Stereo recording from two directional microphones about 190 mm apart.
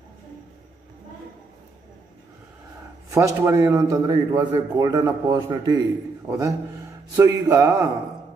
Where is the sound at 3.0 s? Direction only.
15° right (ahead or behind).